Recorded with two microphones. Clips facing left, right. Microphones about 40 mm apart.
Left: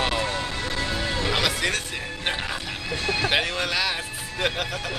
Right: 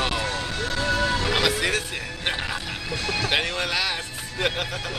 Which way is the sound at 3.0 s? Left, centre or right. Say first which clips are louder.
Left 2 dB; left.